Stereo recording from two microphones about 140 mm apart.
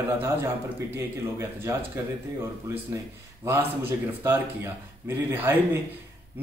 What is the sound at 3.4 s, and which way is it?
A man's voice, 15° right (ahead or behind).